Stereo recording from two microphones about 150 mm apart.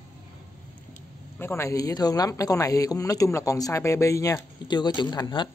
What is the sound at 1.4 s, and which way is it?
Speech, 15° left (ahead or behind).